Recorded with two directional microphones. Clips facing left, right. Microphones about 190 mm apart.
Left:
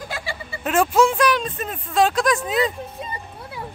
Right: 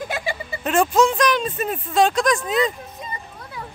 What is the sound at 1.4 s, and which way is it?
Speech, 5° right (ahead or behind).